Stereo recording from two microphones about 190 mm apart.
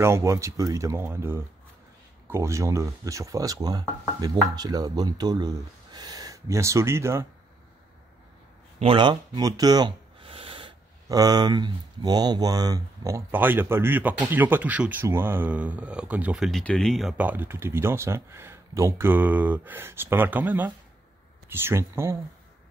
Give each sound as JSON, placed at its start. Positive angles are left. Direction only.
{"t": 0.0, "sound": "speech", "side_deg": -15}
{"t": 8.7, "sound": "speech", "side_deg": -25}